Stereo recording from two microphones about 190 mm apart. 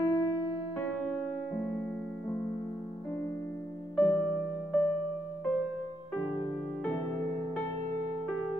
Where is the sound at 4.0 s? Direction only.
10° left (ahead or behind).